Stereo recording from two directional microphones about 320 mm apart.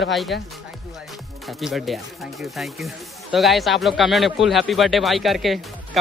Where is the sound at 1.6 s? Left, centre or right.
Centre.